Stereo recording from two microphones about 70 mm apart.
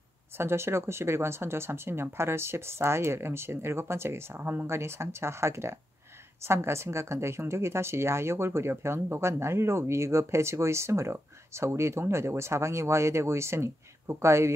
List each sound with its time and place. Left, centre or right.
0.4 s a woman's voice: right